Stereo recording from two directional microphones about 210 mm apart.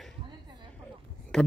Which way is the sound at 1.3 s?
5° left (ahead or behind).